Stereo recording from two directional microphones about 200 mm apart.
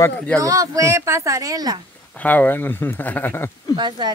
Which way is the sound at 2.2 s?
10° left (ahead or behind).